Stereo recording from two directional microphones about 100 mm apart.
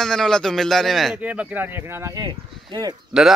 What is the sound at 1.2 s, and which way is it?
Speech, 15° right (ahead or behind).